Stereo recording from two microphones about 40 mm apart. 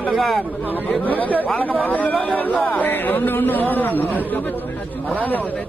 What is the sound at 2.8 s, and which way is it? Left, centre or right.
Speech, left.